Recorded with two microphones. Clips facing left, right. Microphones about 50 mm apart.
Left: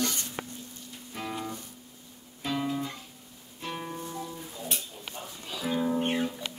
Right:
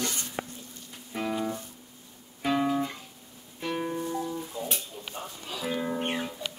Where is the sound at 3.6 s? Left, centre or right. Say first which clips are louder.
Right 5 dB; centre.